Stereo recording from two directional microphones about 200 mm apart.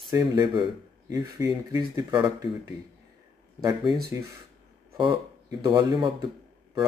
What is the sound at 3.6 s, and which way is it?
Speech, 20° right (ahead or behind).